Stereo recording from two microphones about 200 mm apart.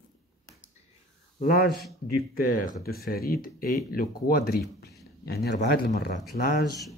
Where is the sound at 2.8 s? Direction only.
50° left (ahead or behind).